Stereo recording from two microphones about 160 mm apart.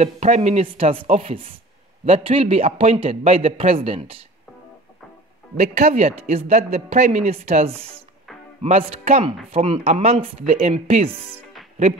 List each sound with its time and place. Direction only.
0.0 s speech: 45° right (ahead or behind)
5.6 s speech: 45° right (ahead or behind)